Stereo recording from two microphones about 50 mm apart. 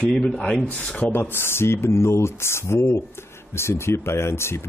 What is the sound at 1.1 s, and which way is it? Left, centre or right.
Speech, left.